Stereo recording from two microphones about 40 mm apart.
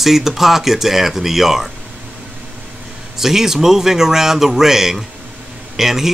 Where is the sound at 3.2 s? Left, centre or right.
Centre.